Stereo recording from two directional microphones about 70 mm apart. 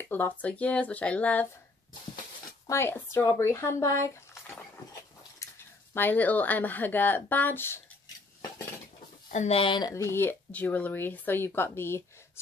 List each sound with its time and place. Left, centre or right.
0.0 s speech: left
2.7 s speech: left
5.4 s a sound: left
5.9 s speech: left
9.9 s speech: left
10.5 s speech: left